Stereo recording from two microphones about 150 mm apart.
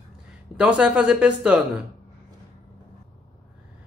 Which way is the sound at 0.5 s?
5° right (ahead or behind).